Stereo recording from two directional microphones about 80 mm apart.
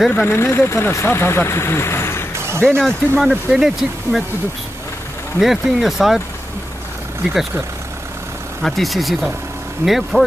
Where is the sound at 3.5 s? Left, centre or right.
Centre.